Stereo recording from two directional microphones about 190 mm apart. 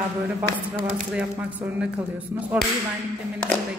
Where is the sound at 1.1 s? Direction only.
5° right (ahead or behind).